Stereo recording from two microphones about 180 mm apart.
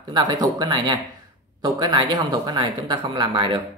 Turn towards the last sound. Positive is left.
turn(degrees=-30)  # may be behind; listen again after turning